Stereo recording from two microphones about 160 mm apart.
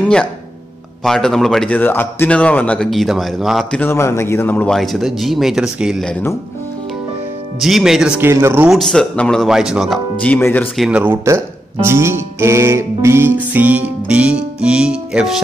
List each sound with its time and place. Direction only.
1.0 s speech: centre (ahead or behind)
3.8 s a man's voice: 15° left (ahead or behind)
4.7 s speech: centre (ahead or behind)
7.6 s speech: centre (ahead or behind)
8.2 s speech: 15° right (ahead or behind)
8.6 s speech: centre (ahead or behind)
10.2 s a man's voice: 10° left (ahead or behind)
10.8 s speech: 10° right (ahead or behind)